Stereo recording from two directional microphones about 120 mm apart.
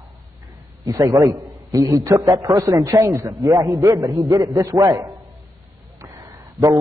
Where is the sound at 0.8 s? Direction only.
30° right (ahead or behind).